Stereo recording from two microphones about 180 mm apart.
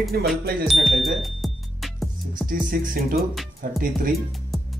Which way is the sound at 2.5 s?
50° right (ahead or behind).